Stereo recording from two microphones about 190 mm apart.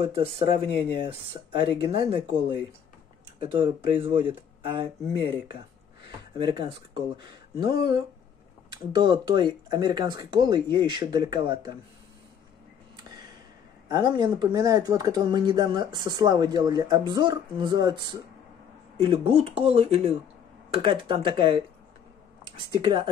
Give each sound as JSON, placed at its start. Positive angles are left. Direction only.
{"t": 0.0, "sound": "speech", "side_deg": -30}
{"t": 6.3, "sound": "speech", "side_deg": -25}
{"t": 13.8, "sound": "speech", "side_deg": -20}
{"t": 18.9, "sound": "speech", "side_deg": -30}